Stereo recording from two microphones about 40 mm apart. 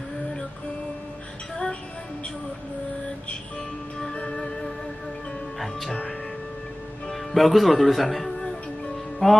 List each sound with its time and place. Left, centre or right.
4.1 s music: left
5.6 s speech: centre
7.3 s speech: centre
9.2 s music: centre